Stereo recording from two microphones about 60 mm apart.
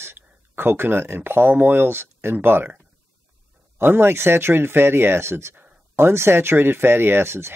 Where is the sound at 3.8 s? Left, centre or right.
Right.